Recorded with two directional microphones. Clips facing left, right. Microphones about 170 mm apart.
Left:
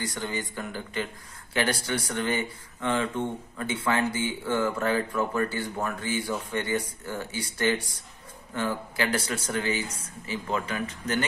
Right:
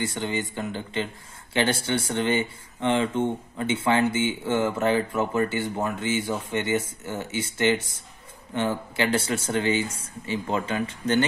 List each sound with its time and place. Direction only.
0.0 s speech: 25° right (ahead or behind)